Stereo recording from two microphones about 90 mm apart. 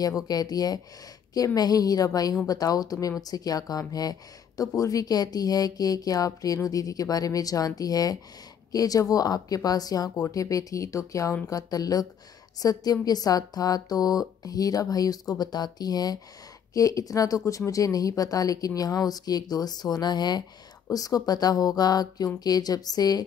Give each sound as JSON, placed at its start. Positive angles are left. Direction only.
{"t": 0.3, "sound": "a woman's voice", "side_deg": 45}
{"t": 20.9, "sound": "speech", "side_deg": 40}